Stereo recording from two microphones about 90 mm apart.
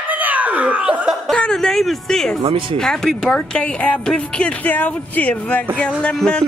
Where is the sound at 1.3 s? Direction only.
10° left (ahead or behind).